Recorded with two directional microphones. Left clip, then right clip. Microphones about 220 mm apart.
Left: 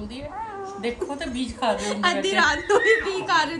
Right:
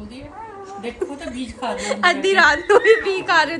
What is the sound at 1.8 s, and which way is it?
A woman's voice, 15° left (ahead or behind).